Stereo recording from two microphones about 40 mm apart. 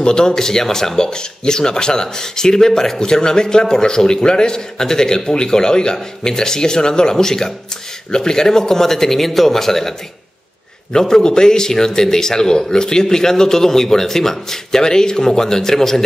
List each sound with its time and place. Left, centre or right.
0.0 s speech: centre